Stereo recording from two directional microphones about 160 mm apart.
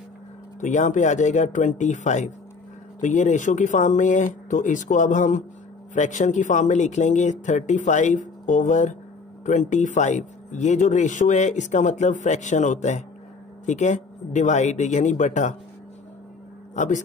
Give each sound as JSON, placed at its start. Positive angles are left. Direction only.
{"t": 0.6, "sound": "speech", "side_deg": 50}
{"t": 16.7, "sound": "speech", "side_deg": 50}